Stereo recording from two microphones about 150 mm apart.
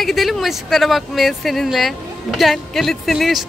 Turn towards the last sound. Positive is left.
turn(degrees=0)  # may be behind; listen again after turning